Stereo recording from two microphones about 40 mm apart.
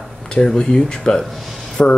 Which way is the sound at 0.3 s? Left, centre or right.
Centre.